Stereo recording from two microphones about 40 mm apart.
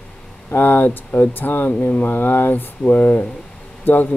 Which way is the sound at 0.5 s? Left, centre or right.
Left.